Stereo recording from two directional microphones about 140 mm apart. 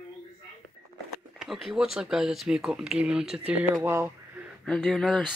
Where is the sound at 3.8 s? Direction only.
15° right (ahead or behind).